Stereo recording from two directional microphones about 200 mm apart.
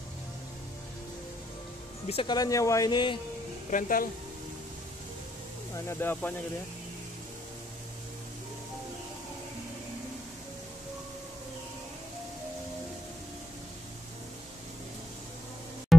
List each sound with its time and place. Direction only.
2.0 s speech: 25° left (ahead or behind)
3.7 s speech: 45° left (ahead or behind)
5.8 s speech: 10° left (ahead or behind)
15.9 s music: centre (ahead or behind)